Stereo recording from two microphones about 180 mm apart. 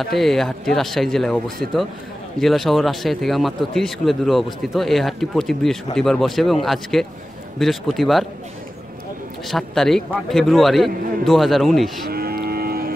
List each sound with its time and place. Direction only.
0.0 s a man's voice: centre (ahead or behind)
9.5 s a man's voice: centre (ahead or behind)
12.1 s cattle: 60° right (ahead or behind)